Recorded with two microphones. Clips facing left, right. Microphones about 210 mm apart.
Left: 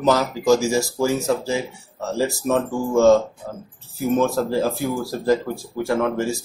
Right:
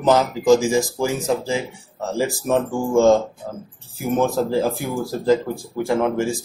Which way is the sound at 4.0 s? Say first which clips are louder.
Even; 15° right (ahead or behind).